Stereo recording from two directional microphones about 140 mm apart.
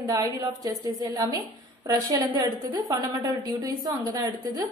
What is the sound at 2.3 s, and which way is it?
Speech, 40° right (ahead or behind).